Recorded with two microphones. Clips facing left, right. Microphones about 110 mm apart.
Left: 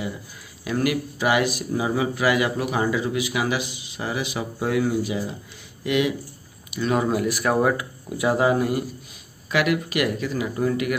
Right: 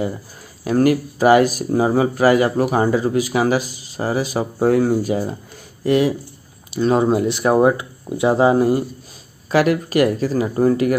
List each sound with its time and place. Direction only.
0.7 s speech: 40° right (ahead or behind)